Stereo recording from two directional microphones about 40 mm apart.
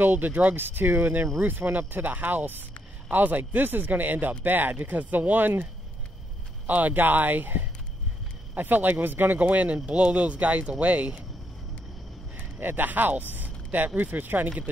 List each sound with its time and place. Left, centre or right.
0.0 s speech: right
0.6 s speech: right
6.7 s speech: right
12.4 s speech: right